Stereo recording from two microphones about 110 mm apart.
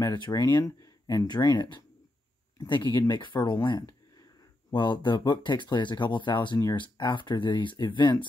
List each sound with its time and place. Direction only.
0.0 s speech: 35° left (ahead or behind)
4.6 s speech: 45° left (ahead or behind)